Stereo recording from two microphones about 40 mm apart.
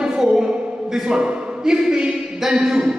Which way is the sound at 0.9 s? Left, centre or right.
Centre.